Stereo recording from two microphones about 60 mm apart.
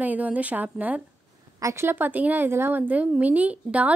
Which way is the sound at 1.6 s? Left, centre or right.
Right.